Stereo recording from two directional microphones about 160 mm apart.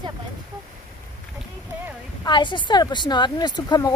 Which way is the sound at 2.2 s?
30° left (ahead or behind).